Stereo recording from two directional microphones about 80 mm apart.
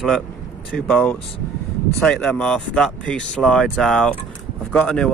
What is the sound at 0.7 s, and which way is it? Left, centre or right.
Speech, centre.